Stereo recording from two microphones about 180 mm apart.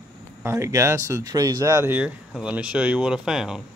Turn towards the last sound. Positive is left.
turn(degrees=-5)  # may be behind; listen again after turning